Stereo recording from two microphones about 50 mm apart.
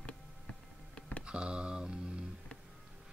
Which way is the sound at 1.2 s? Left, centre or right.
Centre.